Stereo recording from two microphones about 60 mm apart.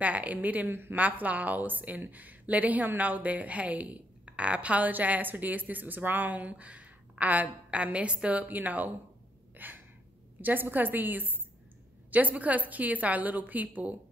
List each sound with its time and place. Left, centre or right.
0.0 s a woman's voice: right
9.6 s gasp: right
10.4 s a woman's voice: right